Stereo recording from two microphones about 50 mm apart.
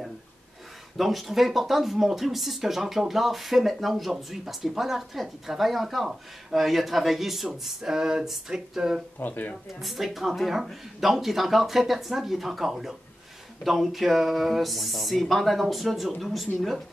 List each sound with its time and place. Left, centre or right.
0.9 s speech: centre
9.2 s speech: left
9.8 s speech: centre